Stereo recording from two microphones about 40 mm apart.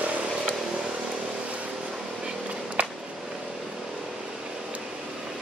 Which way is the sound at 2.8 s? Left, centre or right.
Right.